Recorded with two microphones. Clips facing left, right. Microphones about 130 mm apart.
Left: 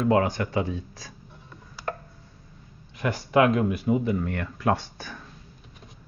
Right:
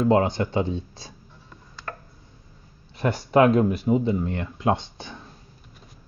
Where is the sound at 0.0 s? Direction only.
30° right (ahead or behind).